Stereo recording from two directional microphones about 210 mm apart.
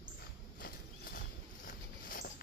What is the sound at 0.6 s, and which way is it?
Horse, 45° left (ahead or behind).